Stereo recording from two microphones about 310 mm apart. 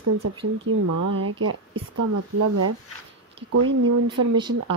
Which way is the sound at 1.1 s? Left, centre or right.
Right.